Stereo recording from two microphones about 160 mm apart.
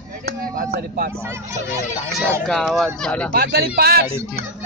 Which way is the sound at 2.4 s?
Centre (ahead or behind).